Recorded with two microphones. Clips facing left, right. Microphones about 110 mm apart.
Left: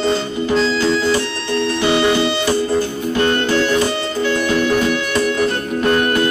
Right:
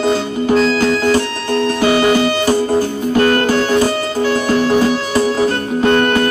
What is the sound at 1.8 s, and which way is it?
Music, 15° right (ahead or behind).